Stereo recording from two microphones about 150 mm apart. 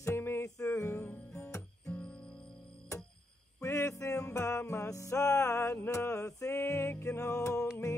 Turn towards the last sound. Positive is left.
turn(degrees=20)  # may be behind; listen again after turning